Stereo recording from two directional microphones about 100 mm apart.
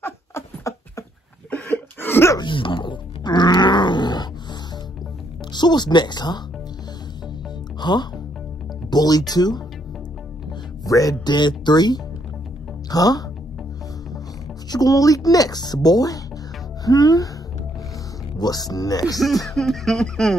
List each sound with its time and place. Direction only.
0.0 s a sound: 25° left (ahead or behind)
1.5 s cough: 20° left (ahead or behind)
2.3 s music: 55° left (ahead or behind)
5.5 s speech: 45° left (ahead or behind)
7.8 s speech: 45° left (ahead or behind)
10.9 s speech: 35° left (ahead or behind)
14.7 s speech: 40° left (ahead or behind)
18.4 s speech: 40° left (ahead or behind)
19.1 s music: centre (ahead or behind)